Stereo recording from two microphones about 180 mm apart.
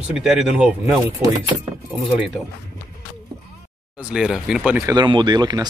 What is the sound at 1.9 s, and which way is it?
Speech, 5° right (ahead or behind).